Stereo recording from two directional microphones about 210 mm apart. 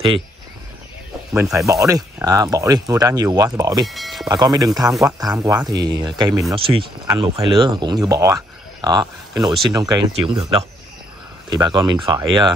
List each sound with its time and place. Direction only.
1.3 s speech: 15° right (ahead or behind)
3.8 s speech: centre (ahead or behind)
4.3 s speech: 20° right (ahead or behind)